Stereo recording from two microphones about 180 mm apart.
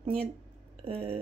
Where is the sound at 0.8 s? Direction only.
35° right (ahead or behind).